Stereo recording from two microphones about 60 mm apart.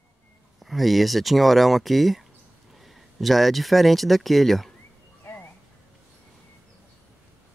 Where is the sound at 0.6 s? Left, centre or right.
Centre.